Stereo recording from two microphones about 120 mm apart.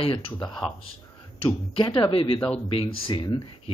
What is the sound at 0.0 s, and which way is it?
Speech, 50° left (ahead or behind).